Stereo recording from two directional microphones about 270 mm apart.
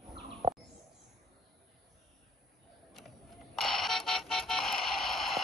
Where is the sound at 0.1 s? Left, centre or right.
Right.